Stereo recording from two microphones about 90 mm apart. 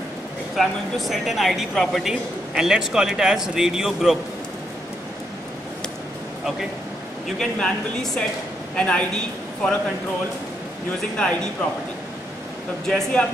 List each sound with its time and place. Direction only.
0.6 s speech: centre (ahead or behind)
7.2 s a man's voice: 5° left (ahead or behind)
12.8 s speech: 5° left (ahead or behind)